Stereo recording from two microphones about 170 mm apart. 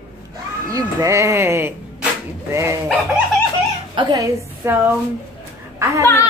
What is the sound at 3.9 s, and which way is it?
Speech, 20° right (ahead or behind).